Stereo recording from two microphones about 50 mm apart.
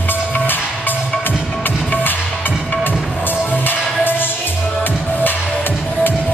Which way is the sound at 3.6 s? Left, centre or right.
Left.